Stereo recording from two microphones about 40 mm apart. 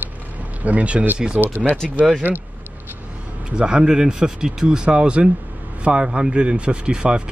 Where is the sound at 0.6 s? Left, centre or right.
Right.